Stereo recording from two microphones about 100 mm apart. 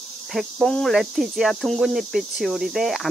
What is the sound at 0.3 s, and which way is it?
Speech, centre (ahead or behind).